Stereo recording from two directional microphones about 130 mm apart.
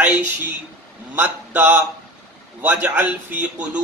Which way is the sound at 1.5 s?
15° right (ahead or behind).